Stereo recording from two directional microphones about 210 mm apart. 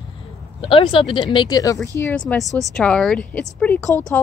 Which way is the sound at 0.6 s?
25° left (ahead or behind).